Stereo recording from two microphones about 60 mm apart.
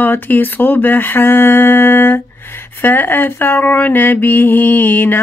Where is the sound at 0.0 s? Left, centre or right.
Left.